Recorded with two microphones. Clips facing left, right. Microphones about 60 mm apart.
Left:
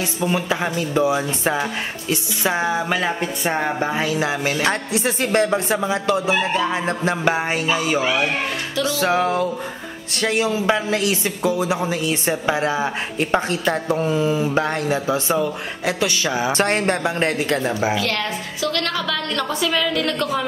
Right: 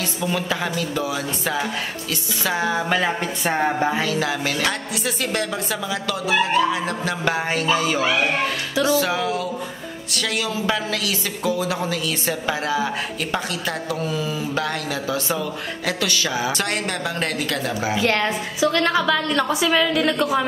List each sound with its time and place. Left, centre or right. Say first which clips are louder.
0.0 s a man's voice: left 2 dB; left
2.9 s speech: even; centre
3.5 s music: right 3 dB; centre
3.9 s a man's voice: left 1 dB; centre
4.6 s a man's voice: left 4 dB; left
9.0 s a sound: left 4 dB; left
10.1 s a man's voice: left 5 dB; left
17.9 s a woman's voice: right 2 dB; right